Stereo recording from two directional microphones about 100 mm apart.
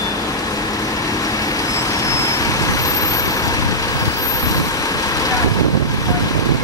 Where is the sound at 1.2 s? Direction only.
35° left (ahead or behind).